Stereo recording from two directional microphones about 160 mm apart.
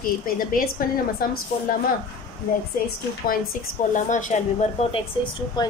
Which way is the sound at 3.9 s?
50° left (ahead or behind).